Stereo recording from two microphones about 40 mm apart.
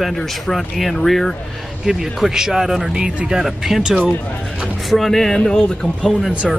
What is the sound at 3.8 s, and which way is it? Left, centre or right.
Speech, right.